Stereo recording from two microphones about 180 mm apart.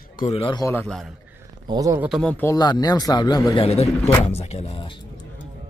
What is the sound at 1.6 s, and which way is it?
Speech, 20° right (ahead or behind).